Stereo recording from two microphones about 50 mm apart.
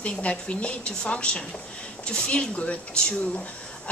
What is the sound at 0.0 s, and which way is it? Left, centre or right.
A woman's voice, left.